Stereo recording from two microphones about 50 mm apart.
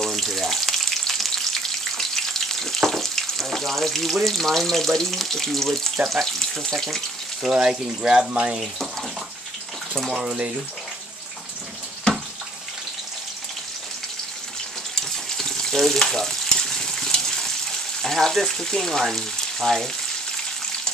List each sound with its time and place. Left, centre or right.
0.0 s frying: centre
6.0 s speech: centre
7.5 s speech: centre
10.2 s speech: centre
15.0 s frying: centre